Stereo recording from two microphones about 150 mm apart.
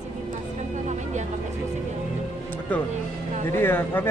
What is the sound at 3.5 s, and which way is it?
Speech, 15° left (ahead or behind).